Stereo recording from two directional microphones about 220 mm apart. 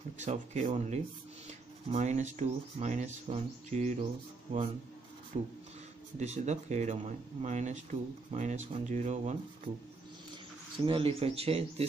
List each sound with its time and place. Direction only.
0.2 s speech: 30° right (ahead or behind)
10.9 s speech: 25° right (ahead or behind)